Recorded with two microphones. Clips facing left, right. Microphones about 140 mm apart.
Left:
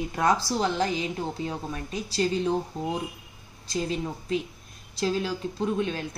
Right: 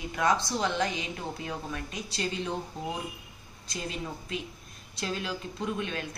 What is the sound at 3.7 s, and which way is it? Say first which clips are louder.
A woman's voice: left 7 dB; 35° left (ahead or behind).